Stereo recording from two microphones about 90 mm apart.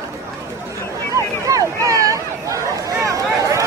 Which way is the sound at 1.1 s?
40° right (ahead or behind).